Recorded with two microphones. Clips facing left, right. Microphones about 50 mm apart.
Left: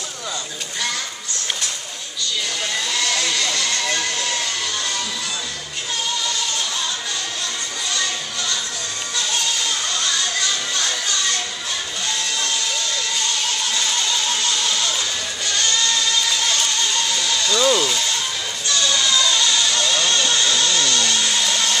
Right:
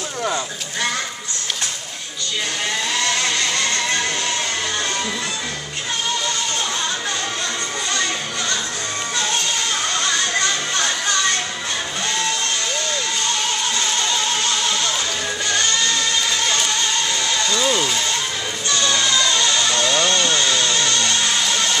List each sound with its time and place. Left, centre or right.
2.9 s a sound: right
9.9 s music: right
14.0 s music: centre
17.3 s a sound: centre
18.7 s music: right
21.4 s music: centre